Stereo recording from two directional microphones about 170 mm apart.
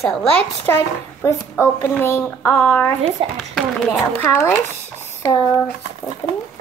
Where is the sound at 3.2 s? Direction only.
35° right (ahead or behind).